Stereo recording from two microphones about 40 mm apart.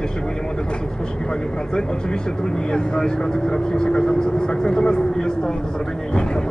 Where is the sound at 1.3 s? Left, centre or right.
Centre.